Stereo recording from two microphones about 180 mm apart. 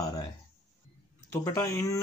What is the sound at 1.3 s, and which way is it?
Speech, 20° left (ahead or behind).